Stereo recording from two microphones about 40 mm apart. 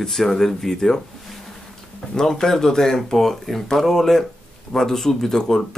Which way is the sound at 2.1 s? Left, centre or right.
Centre.